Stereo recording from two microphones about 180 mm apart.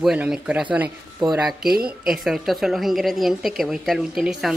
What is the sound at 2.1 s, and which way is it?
A woman's voice, centre (ahead or behind).